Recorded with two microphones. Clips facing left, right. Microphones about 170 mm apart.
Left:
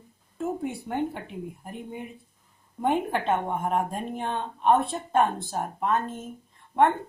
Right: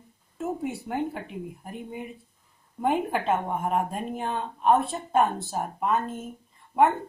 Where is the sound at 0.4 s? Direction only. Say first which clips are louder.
Even; 5° right (ahead or behind).